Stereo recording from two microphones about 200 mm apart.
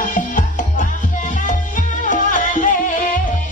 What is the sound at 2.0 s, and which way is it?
Music, 40° left (ahead or behind).